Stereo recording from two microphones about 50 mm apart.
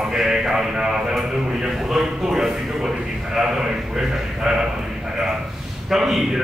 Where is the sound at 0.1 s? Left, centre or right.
Centre.